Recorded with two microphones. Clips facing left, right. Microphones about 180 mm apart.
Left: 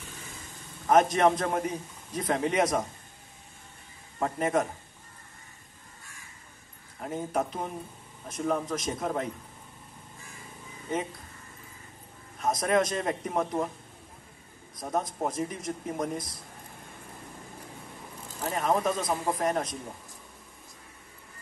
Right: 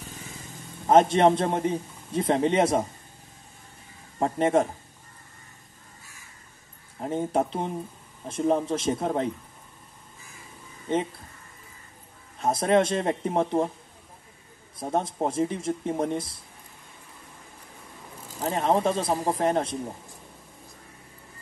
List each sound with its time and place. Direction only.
0.8 s a man's voice: 30° right (ahead or behind)
4.2 s a man's voice: 30° right (ahead or behind)
7.0 s a man's voice: 30° right (ahead or behind)
10.9 s a man's voice: 30° right (ahead or behind)
12.4 s a man's voice: 30° right (ahead or behind)
14.8 s a man's voice: 30° right (ahead or behind)
18.4 s a man's voice: 30° right (ahead or behind)